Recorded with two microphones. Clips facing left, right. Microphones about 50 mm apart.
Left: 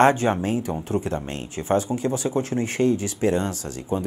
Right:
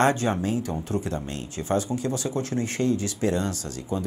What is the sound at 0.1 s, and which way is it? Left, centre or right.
Speech, left.